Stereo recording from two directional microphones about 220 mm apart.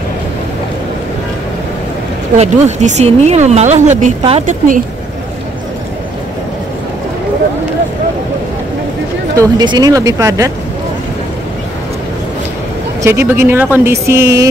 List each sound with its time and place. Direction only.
2.3 s speech: 30° right (ahead or behind)
9.4 s speech: 20° right (ahead or behind)
13.0 s speech: 10° right (ahead or behind)